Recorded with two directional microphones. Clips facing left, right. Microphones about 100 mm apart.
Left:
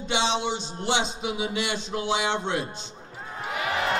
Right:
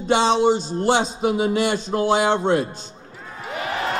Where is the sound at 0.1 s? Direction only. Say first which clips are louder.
Right 9 dB; 45° right (ahead or behind).